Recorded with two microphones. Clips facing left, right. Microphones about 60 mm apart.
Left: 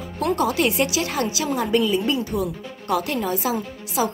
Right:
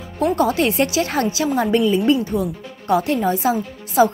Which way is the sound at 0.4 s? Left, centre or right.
Right.